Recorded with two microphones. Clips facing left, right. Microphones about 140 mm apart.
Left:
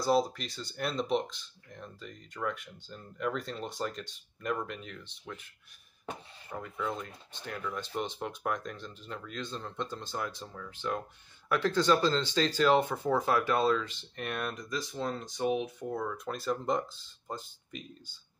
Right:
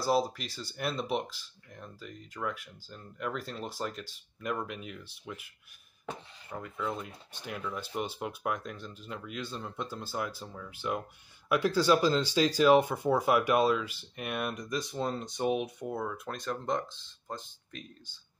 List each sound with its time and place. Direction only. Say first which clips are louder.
0.0 s speech: left 1 dB; 5° right (ahead or behind)
6.5 s speech: even; centre (ahead or behind); by 15.9 s 20° right (ahead or behind)
15.9 s speech: left 1 dB; 5° right (ahead or behind)
16.3 s speech: left 2 dB; 5° left (ahead or behind)